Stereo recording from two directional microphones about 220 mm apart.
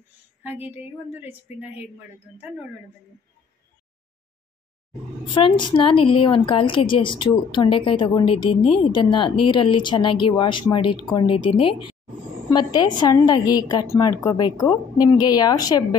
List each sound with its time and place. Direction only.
0.4 s a woman's voice: 10° right (ahead or behind)
5.3 s a woman's voice: 20° left (ahead or behind)